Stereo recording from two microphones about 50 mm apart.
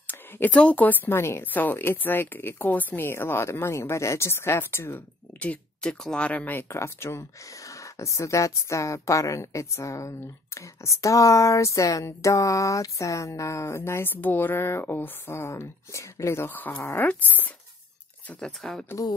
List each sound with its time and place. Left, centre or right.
0.0 s a sound: left
0.5 s speech: left
1.1 s speech: left
1.4 s speech: left
3.0 s speech: left
5.4 s speech: left
6.7 s speech: left
7.7 s a woman's voice: left
14.1 s speech: left
15.4 s speech: left
16.4 s speech: left
18.6 s speech: centre